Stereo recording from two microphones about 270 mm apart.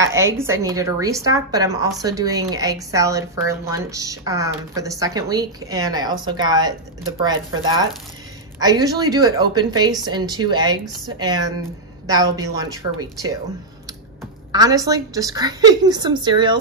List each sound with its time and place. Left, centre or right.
0.4 s a woman's voice: centre
14.5 s a woman's voice: centre